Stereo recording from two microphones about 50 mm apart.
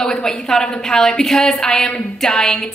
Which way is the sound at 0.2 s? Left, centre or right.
Centre.